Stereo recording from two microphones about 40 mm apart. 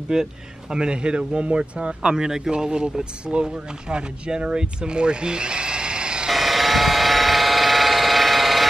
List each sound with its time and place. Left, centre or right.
0.1 s speech: centre
2.1 s speech: centre
6.3 s vehicle: centre